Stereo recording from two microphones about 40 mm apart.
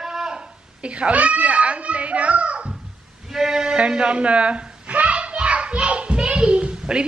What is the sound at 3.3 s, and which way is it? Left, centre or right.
Speech, centre.